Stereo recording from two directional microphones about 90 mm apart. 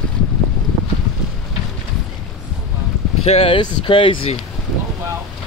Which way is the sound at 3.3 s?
80° left.